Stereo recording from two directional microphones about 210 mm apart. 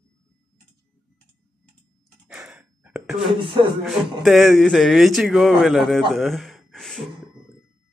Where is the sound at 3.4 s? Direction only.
25° right (ahead or behind).